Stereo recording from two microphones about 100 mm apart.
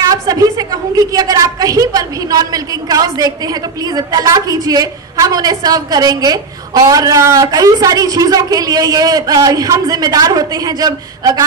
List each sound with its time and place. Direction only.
0.1 s a woman's voice: 40° right (ahead or behind)